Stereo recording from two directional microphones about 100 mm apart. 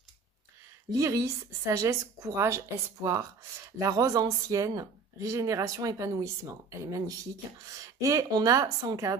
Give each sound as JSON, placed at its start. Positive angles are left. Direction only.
{"t": 0.8, "sound": "speech", "side_deg": -35}